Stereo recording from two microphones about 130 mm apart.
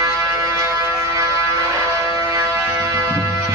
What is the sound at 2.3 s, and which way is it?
Music, 20° right (ahead or behind).